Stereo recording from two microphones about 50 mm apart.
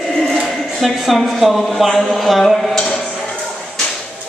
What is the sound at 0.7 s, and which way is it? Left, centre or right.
Speech, centre.